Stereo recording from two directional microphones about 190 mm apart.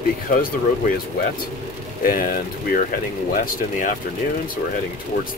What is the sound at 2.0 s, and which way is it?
Speech, 45° left (ahead or behind).